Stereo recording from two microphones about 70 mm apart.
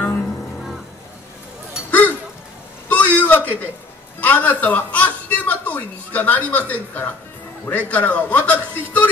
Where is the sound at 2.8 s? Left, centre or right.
Left.